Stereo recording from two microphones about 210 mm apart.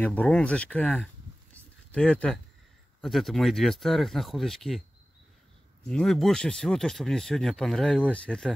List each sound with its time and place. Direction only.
0.0 s speech: 5° left (ahead or behind)
5.9 s speech: centre (ahead or behind)